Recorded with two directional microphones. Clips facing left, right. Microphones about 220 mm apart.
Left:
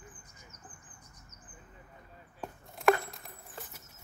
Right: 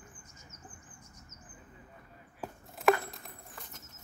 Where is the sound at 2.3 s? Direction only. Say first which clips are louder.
Even; centre (ahead or behind).